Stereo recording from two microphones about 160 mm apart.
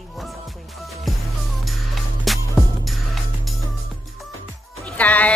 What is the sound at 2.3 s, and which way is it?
Music, centre (ahead or behind).